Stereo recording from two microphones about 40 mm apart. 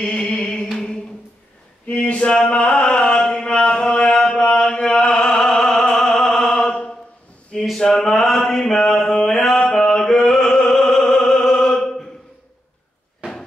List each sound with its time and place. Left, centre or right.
0.0 s music: left
1.9 s a sound: left
3.4 s mantra: left
7.6 s male singing: centre
8.5 s a sound: centre
9.4 s music: centre